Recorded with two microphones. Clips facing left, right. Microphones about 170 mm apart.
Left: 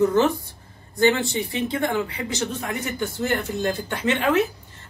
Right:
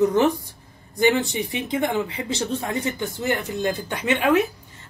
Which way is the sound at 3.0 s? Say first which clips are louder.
Even; 15° right (ahead or behind).